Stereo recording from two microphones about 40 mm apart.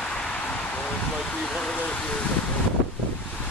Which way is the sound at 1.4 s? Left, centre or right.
Centre.